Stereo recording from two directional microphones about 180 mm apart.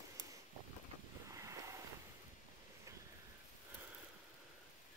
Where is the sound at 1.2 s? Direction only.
15° right (ahead or behind).